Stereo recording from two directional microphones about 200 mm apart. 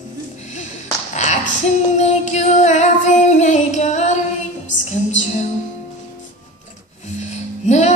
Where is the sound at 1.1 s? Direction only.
35° left (ahead or behind).